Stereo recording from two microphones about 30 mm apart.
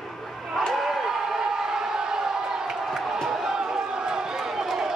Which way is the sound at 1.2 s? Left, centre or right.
Right.